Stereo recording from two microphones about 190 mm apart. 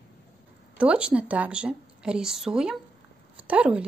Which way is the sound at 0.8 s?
5° right (ahead or behind).